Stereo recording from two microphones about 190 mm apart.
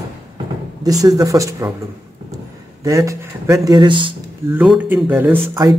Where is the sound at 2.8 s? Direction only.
15° right (ahead or behind).